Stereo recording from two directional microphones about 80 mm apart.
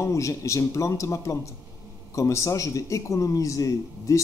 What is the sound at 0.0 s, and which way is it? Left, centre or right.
A man's voice, left.